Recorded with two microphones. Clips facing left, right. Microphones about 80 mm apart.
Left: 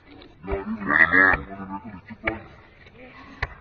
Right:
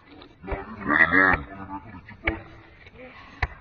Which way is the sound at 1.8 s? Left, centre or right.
Centre.